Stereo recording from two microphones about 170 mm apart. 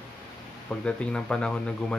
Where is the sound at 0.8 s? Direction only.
5° left (ahead or behind).